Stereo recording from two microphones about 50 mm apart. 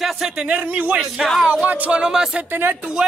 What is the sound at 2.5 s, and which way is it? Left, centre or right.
Speech, right.